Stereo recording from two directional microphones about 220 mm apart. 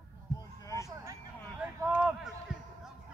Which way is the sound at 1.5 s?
10° right (ahead or behind).